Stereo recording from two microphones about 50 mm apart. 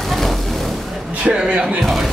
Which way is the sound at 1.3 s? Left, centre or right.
Right.